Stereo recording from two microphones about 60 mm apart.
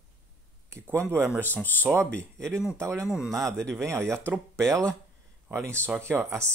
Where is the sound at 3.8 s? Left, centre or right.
Right.